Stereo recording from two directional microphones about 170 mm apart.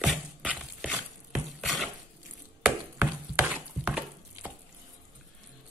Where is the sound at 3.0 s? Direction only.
10° right (ahead or behind).